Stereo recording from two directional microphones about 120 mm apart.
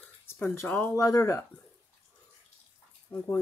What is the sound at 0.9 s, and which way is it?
Speech, 30° left (ahead or behind).